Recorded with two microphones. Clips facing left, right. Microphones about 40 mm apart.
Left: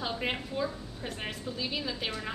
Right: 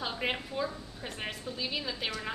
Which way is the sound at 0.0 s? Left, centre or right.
Centre.